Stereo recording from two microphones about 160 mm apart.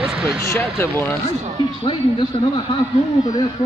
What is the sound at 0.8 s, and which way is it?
Speech, 15° left (ahead or behind).